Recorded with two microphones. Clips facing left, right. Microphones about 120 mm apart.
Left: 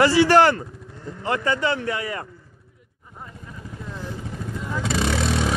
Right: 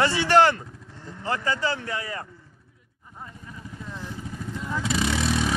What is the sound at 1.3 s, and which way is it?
Speech, 30° right (ahead or behind).